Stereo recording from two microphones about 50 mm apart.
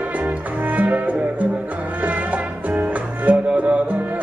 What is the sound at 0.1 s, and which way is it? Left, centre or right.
Music, right.